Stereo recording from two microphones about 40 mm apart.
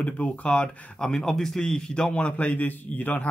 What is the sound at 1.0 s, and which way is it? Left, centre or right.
Speech, centre.